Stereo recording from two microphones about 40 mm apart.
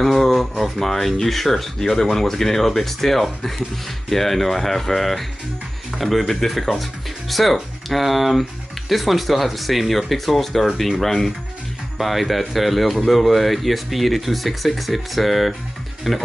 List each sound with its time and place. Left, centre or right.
0.0 s speech: centre